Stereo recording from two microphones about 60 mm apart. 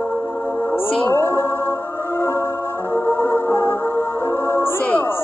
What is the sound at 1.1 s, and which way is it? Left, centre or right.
Music, left.